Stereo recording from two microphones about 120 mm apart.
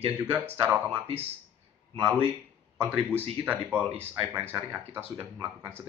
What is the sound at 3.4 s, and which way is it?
Speech, 15° right (ahead or behind).